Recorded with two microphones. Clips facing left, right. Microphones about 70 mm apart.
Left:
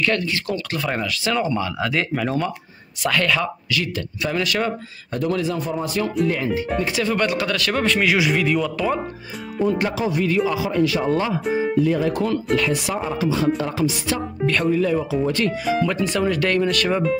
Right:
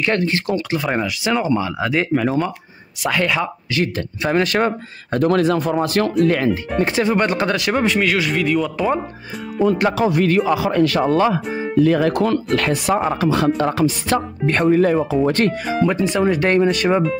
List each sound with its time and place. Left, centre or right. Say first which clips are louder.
0.0 s speech: right 3 dB; right
0.7 s speech: right 4 dB; centre
3.7 s speech: right 7 dB; right
5.1 s speech: right 6 dB; right
6.8 s speech: right 7 dB; right
7.5 s speech: right 3 dB; centre
8.0 s a man's voice: even; centre
9.6 s speech: right 4 dB; right
14.6 s speech: right 7 dB; right
15.8 s speech: right 8 dB; right